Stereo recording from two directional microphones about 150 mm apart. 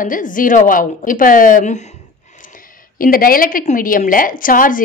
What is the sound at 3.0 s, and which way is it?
A woman's voice, 70° left (ahead or behind).